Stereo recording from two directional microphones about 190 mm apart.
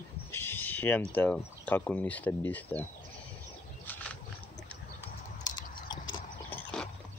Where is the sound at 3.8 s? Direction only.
10° left (ahead or behind).